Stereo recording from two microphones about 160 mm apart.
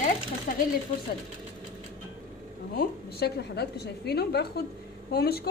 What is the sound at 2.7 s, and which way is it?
A woman's voice, 85° left.